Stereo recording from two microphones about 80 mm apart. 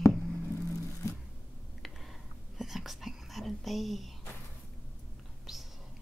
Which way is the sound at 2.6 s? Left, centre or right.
Centre.